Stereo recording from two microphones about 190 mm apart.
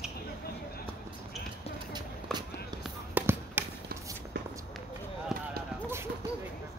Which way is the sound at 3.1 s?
10° right (ahead or behind).